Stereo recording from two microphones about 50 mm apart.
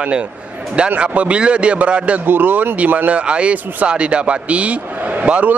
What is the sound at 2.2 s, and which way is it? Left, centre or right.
Speech, right.